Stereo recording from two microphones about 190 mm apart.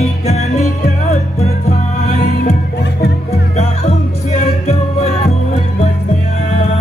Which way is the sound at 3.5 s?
35° left (ahead or behind).